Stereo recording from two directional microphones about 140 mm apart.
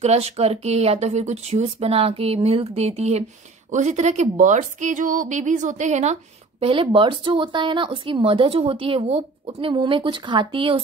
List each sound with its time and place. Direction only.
0.0 s a woman's voice: 45° right (ahead or behind)
6.6 s speech: 40° right (ahead or behind)